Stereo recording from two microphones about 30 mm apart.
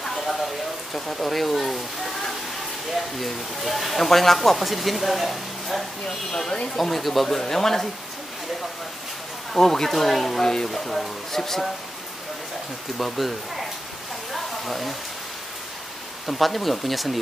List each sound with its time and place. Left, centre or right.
0.9 s speech: centre
6.0 s speech: centre
6.8 s speech: centre
9.5 s speech: centre
10.4 s speech: centre
10.7 s speech: centre
12.9 s speech: centre
14.3 s a sound: centre
16.3 s speech: centre